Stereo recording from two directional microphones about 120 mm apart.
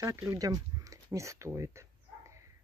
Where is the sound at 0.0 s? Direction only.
25° right (ahead or behind).